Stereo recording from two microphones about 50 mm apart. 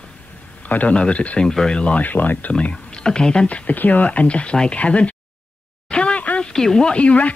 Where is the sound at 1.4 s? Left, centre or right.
Centre.